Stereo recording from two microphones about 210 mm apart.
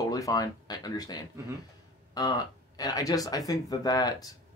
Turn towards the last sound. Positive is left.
turn(degrees=15)  # may be behind; listen again after turning